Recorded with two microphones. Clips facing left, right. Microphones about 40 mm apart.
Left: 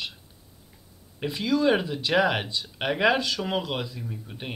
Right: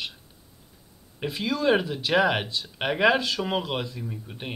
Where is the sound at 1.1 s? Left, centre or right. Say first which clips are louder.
Left 3 dB; centre.